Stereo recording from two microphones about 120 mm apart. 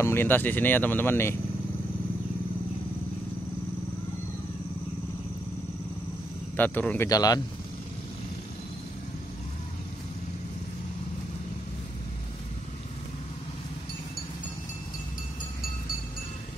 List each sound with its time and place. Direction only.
0.0 s speech: 20° left (ahead or behind)
6.5 s speech: 15° left (ahead or behind)
7.1 s speech: 30° left (ahead or behind)